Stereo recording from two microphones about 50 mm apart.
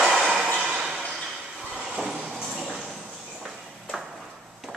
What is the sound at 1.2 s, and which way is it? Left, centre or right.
Train, centre.